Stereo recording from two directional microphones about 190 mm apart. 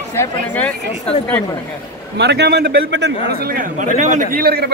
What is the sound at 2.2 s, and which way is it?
A man's voice, 60° right (ahead or behind).